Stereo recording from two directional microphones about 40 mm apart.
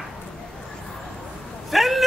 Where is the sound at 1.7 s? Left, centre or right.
Centre.